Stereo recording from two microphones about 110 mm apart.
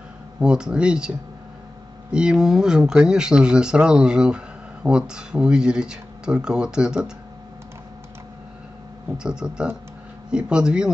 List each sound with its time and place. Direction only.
0.4 s speech: 5° right (ahead or behind)
9.1 s speech: 5° right (ahead or behind)